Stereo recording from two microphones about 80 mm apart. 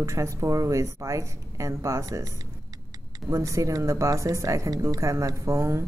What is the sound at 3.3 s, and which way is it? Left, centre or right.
Speech, right.